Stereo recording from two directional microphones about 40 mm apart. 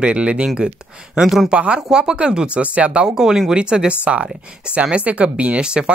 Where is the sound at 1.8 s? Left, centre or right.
Centre.